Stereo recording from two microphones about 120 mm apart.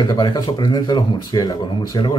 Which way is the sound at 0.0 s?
35° left (ahead or behind).